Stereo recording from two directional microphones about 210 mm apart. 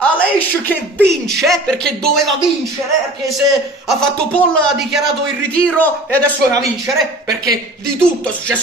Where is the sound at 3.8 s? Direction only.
Centre (ahead or behind).